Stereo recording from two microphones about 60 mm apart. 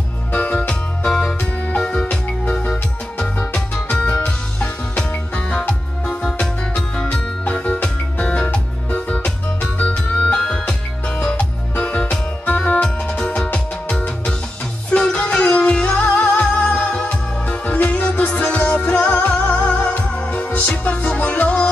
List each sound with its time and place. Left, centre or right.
0.3 s music: left
12.8 s music: centre